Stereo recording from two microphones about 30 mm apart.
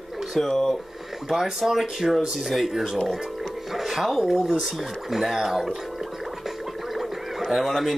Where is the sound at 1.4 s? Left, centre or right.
Centre.